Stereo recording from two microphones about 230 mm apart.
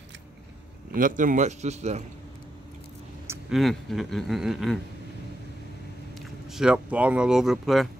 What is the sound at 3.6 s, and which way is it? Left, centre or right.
Speech, centre.